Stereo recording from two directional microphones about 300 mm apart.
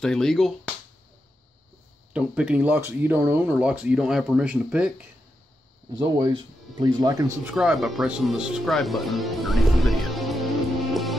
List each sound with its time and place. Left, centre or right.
0.0 s speech: centre
2.1 s speech: centre
10.9 s music: centre